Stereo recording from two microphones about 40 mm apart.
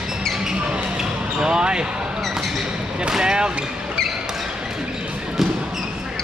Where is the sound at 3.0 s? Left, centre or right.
Centre.